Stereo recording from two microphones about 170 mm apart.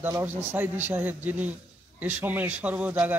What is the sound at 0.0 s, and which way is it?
A man's voice, 10° right (ahead or behind).